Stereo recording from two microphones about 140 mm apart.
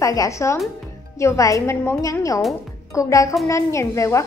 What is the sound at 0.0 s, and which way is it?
A woman's voice, 25° left (ahead or behind).